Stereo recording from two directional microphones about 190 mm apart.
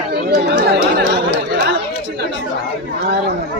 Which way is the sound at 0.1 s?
60° right (ahead or behind).